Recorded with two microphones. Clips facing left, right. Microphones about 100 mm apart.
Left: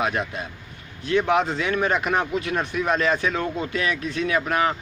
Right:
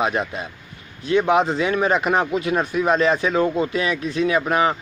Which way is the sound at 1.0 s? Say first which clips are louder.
Right 3 dB; 5° right (ahead or behind).